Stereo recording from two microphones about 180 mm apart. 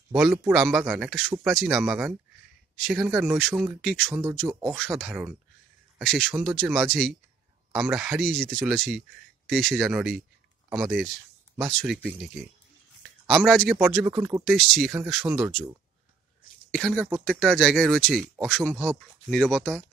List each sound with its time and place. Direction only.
0.1 s speech: centre (ahead or behind)
4.1 s speech: 20° right (ahead or behind)
4.7 s speech: 5° left (ahead or behind)
13.3 s speech: centre (ahead or behind)
14.0 s speech: 15° right (ahead or behind)
14.4 s speech: centre (ahead or behind)
16.7 s speech: centre (ahead or behind)